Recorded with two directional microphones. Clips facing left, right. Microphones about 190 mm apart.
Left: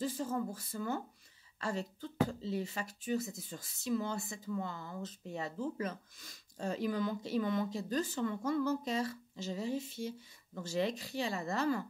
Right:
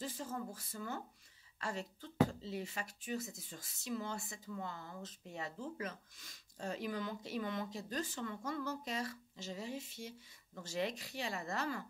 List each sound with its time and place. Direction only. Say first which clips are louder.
0.0 s speech: left 7 dB; 35° left (ahead or behind)